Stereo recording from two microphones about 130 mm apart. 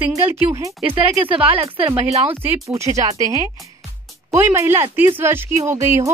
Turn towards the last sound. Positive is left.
turn(degrees=-20)  # may be behind; listen again after turning